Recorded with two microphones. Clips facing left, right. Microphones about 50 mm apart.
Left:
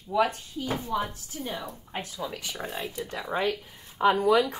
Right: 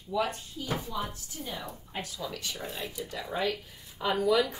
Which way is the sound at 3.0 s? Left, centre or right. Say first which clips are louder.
Left 3 dB; left.